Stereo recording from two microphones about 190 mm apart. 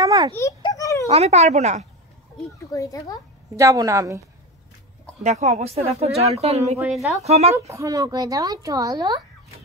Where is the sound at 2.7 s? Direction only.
20° left (ahead or behind).